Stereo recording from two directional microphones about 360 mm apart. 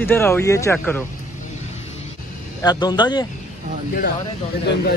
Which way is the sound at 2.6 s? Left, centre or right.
Centre.